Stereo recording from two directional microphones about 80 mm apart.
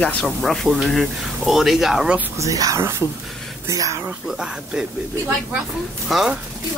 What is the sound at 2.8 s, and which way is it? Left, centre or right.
Speech, right.